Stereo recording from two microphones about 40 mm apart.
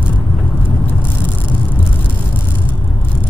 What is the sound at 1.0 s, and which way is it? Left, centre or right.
Vehicle, left.